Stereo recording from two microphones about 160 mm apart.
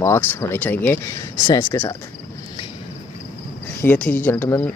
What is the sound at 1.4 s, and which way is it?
Speech, 25° left (ahead or behind).